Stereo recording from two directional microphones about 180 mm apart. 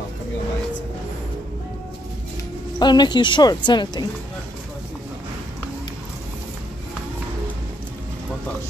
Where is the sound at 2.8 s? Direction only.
25° left (ahead or behind).